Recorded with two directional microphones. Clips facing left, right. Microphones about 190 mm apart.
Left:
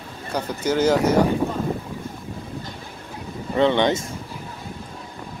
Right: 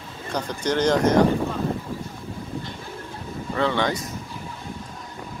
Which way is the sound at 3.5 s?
20° left (ahead or behind).